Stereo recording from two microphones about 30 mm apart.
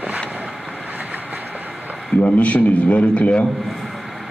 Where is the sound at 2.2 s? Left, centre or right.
Left.